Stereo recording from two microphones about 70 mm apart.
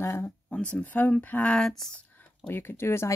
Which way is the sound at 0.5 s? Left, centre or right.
Centre.